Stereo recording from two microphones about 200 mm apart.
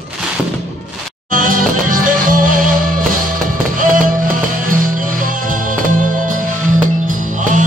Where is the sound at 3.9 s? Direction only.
40° right (ahead or behind).